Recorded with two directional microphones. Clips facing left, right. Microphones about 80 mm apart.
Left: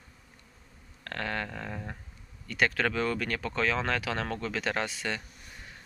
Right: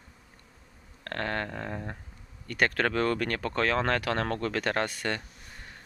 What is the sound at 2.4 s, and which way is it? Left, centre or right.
Speech, right.